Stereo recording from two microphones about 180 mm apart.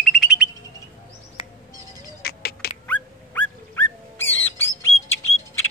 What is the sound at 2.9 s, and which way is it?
Bird, 10° left (ahead or behind).